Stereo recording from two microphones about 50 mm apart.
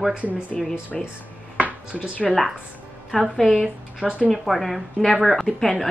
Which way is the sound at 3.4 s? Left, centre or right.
Centre.